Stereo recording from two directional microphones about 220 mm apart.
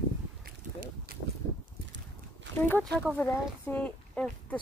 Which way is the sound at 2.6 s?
10° left (ahead or behind).